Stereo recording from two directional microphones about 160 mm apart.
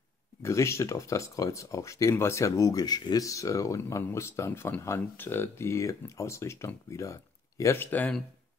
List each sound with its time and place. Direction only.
0.4 s speech: 20° left (ahead or behind)